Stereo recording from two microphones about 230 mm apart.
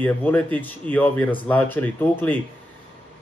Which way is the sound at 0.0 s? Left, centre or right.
Centre.